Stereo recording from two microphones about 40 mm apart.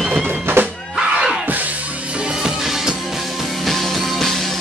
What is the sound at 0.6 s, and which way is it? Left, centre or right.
Music, right.